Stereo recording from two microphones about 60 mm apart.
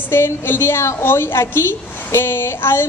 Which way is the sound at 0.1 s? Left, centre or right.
Left.